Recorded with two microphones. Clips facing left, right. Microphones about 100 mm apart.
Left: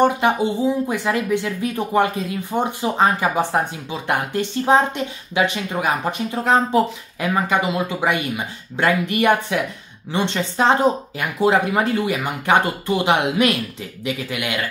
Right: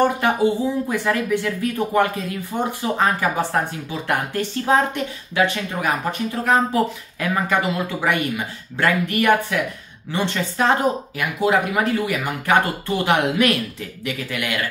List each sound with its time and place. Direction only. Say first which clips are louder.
0.0 s speech: left 1 dB; 20° left (ahead or behind)